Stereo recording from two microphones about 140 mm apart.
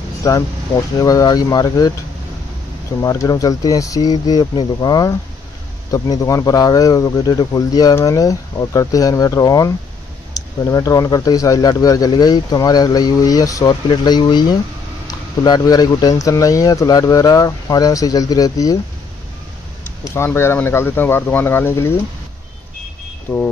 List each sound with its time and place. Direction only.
0.2 s speech: 25° left (ahead or behind)
3.0 s speech: 25° left (ahead or behind)
20.2 s speech: 15° left (ahead or behind)
23.3 s speech: 15° left (ahead or behind)